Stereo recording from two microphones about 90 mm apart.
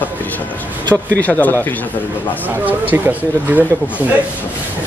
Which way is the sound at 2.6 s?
20° right (ahead or behind).